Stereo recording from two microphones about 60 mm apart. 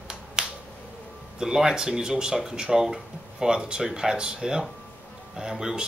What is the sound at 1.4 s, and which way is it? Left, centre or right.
Speech, centre.